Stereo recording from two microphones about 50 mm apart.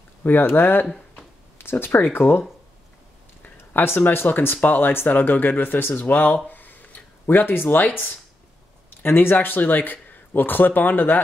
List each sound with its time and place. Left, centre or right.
0.2 s speech: left
3.5 s speech: left